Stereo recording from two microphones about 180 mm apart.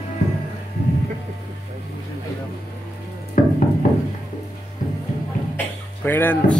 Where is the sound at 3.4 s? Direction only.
50° left (ahead or behind).